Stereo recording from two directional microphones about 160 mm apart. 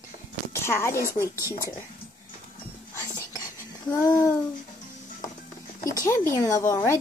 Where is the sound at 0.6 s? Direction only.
15° left (ahead or behind).